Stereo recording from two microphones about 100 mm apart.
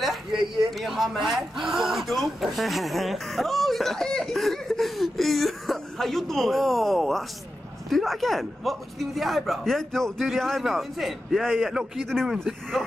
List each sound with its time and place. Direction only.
0.3 s speech: 50° right (ahead or behind)
0.7 s a man's voice: centre (ahead or behind)